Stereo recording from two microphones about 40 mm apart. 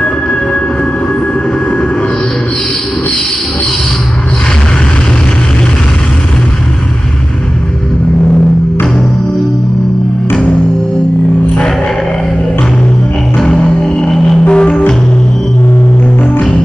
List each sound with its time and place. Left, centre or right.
0.0 s train: left
13.8 s music: left